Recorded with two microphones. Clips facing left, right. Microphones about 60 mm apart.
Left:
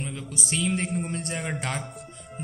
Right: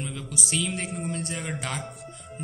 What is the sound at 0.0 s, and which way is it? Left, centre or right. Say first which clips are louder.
A man's voice: even; left.